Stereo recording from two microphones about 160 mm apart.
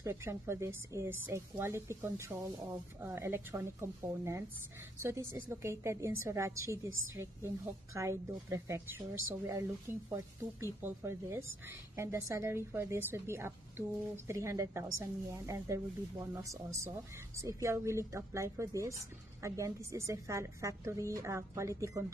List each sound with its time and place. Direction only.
0.0 s a woman's voice: 15° right (ahead or behind)